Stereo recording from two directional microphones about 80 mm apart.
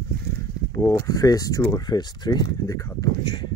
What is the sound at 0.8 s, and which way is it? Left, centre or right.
Speech, left.